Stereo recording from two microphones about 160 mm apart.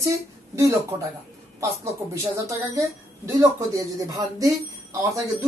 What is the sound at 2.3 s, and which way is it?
Speech, 20° right (ahead or behind).